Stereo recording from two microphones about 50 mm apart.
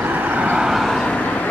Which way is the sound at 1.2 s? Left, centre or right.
Left.